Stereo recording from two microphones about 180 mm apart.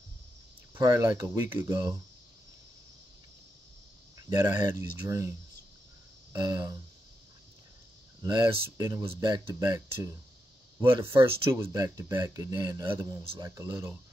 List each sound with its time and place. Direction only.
0.7 s speech: 20° right (ahead or behind)
4.3 s speech: 20° right (ahead or behind)
6.3 s speech: 25° right (ahead or behind)
8.2 s speech: 25° right (ahead or behind)
11.1 s speech: 30° right (ahead or behind)
11.5 s speech: 20° right (ahead or behind)
13.2 s speech: 30° right (ahead or behind)
13.6 s speech: 15° right (ahead or behind)